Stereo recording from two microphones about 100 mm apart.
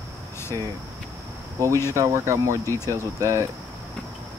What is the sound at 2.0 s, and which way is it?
Speech, 30° right (ahead or behind).